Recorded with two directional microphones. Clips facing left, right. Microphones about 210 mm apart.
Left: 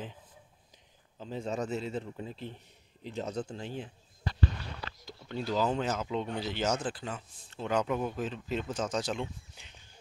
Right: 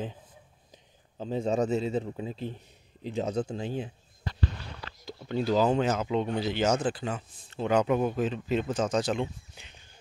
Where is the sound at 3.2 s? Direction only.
90° right.